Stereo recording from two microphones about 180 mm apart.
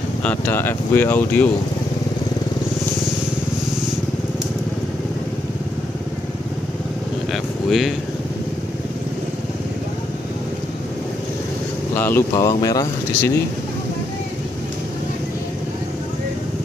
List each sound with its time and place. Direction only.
0.2 s speech: 10° left (ahead or behind)
11.9 s speech: 10° left (ahead or behind)